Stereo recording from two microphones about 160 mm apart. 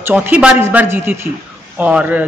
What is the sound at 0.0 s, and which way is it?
Speech, 10° right (ahead or behind).